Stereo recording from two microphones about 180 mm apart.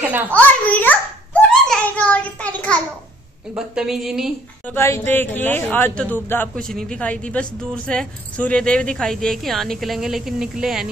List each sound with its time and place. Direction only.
0.3 s a sound: 10° left (ahead or behind)
3.5 s a man's voice: 5° right (ahead or behind)
4.6 s a man's voice: 15° left (ahead or behind); by 10.9 s 5° right (ahead or behind)